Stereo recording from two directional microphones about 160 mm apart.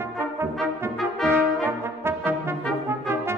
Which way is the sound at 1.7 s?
15° right (ahead or behind).